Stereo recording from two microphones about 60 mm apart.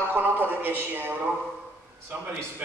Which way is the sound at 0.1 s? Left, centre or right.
Right.